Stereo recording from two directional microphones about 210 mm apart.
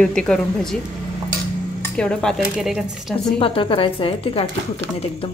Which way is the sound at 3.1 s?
25° left (ahead or behind).